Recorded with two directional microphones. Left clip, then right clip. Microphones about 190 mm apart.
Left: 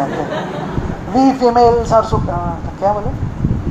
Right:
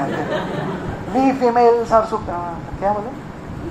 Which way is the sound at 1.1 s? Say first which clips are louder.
Left 4 dB; 30° left (ahead or behind).